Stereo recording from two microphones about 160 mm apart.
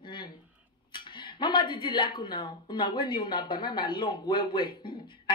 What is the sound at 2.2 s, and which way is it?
Speech, 30° left (ahead or behind).